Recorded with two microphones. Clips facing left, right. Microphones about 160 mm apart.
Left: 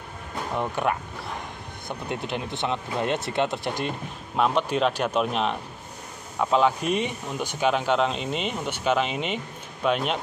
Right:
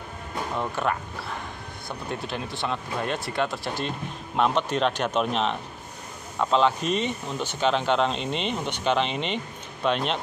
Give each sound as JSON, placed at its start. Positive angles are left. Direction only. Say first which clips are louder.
{"t": 0.6, "sound": "speech", "louder": "left 2 dB", "side_deg": 15}
{"t": 4.4, "sound": "speech", "louder": "left 1 dB", "side_deg": 5}